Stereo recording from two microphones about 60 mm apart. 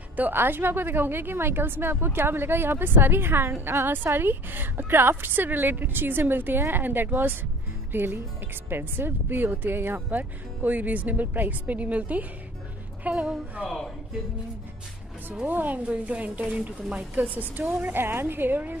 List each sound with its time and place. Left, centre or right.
0.1 s a woman's voice: right
15.4 s speech: right
17.6 s a woman's voice: right